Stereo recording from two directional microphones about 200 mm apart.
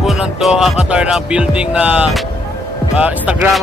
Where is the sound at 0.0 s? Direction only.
Centre (ahead or behind).